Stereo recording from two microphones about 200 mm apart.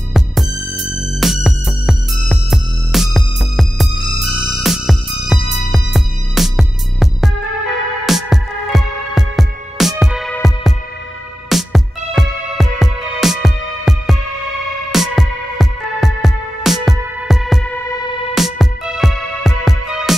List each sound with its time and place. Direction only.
0.1 s music: centre (ahead or behind)
11.4 s music: centre (ahead or behind)
17.7 s music: 15° left (ahead or behind)
18.3 s music: centre (ahead or behind)